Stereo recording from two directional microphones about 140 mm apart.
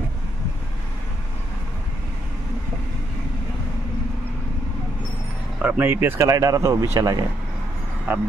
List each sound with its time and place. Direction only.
5.6 s speech: 15° right (ahead or behind)
8.1 s speech: 10° right (ahead or behind)